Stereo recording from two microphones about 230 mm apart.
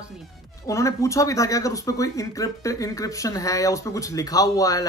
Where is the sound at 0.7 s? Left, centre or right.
Centre.